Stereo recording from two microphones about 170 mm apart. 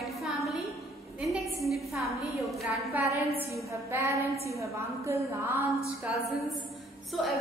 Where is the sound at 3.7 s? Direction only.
15° right (ahead or behind).